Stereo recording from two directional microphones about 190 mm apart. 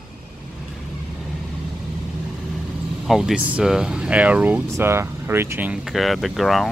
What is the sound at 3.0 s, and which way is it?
Speech, centre (ahead or behind).